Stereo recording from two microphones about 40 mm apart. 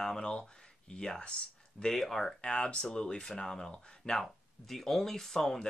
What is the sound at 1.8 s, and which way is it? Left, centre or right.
Speech, centre.